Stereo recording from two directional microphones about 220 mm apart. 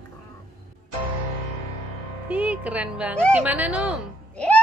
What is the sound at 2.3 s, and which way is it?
A child's voice, 5° right (ahead or behind).